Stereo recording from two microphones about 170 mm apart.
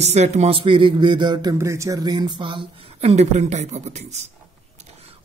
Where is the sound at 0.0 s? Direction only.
40° right (ahead or behind).